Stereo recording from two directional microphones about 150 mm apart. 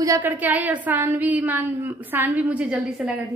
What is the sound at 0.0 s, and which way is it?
A woman's voice, 15° right (ahead or behind).